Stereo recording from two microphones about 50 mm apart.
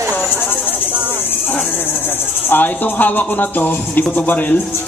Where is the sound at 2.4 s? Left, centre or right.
Left.